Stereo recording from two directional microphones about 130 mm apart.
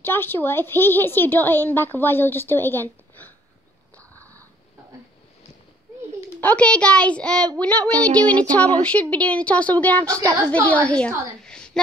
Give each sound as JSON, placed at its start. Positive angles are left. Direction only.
{"t": 0.0, "sound": "a child's voice", "side_deg": 15}
{"t": 6.4, "sound": "a child's voice", "side_deg": 10}